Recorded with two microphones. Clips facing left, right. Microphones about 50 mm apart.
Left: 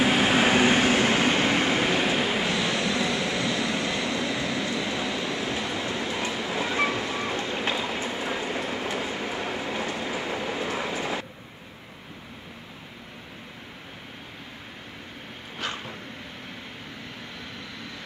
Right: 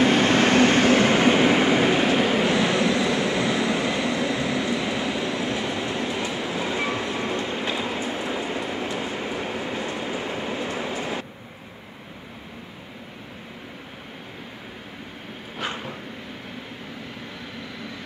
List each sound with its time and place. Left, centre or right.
0.0 s train: centre
2.5 s vehicle: centre
6.9 s train: centre
15.6 s dog: centre